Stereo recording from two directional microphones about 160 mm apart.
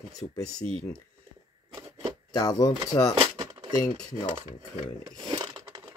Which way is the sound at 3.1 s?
30° right (ahead or behind).